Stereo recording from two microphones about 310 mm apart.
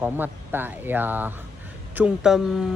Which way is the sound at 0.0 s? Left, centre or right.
Centre.